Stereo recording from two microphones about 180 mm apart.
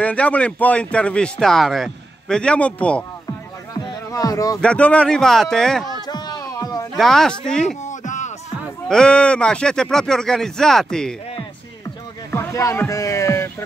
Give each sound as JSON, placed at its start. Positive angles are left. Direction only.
{"t": 0.0, "sound": "speech", "side_deg": 5}
{"t": 4.1, "sound": "speech", "side_deg": 20}
{"t": 4.6, "sound": "speech", "side_deg": 5}
{"t": 5.9, "sound": "a sound", "side_deg": 25}
{"t": 7.0, "sound": "speech", "side_deg": 0}
{"t": 7.8, "sound": "a sound", "side_deg": 40}
{"t": 8.8, "sound": "speech", "side_deg": 5}
{"t": 12.3, "sound": "speech", "side_deg": 15}